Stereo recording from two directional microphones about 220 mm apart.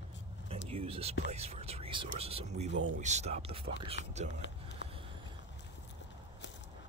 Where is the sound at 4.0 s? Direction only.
60° left (ahead or behind).